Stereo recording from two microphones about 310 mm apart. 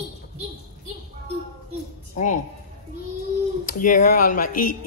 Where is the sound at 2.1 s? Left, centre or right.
Left.